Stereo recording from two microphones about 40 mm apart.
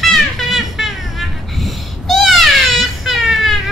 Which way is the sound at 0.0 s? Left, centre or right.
Centre.